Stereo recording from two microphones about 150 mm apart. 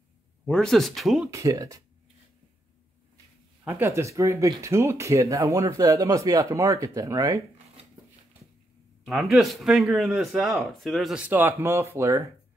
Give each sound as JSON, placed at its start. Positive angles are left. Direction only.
{"t": 0.5, "sound": "a man's voice", "side_deg": 5}
{"t": 1.3, "sound": "speech", "side_deg": -20}
{"t": 3.6, "sound": "speech", "side_deg": -15}
{"t": 9.0, "sound": "a man's voice", "side_deg": 0}